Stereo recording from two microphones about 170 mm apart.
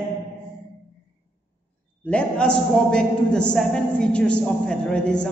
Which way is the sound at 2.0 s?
5° left (ahead or behind).